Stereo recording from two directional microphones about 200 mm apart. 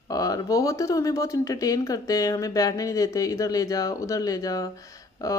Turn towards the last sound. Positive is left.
turn(degrees=15)  # may be behind; listen again after turning